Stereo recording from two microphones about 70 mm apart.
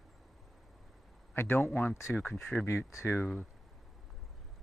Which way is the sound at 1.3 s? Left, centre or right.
Left.